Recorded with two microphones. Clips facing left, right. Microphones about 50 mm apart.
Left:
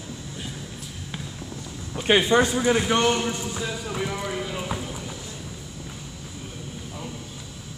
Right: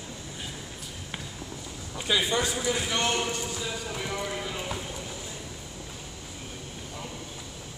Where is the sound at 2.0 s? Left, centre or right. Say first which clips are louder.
Left 8 dB; left.